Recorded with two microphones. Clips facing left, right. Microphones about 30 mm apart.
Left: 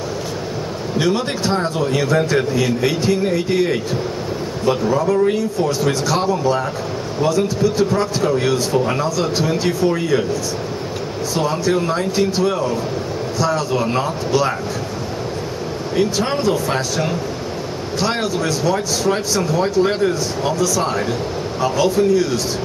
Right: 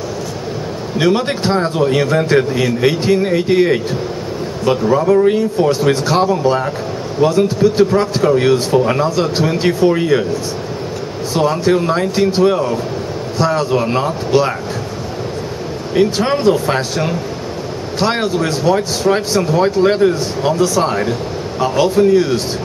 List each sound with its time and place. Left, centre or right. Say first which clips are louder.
0.9 s a man's voice: right 4 dB; right
4.8 s speech: right 6 dB; right
11.6 s speech: right 4 dB; right
16.2 s speech: right 4 dB; centre
20.5 s speech: right 4 dB; right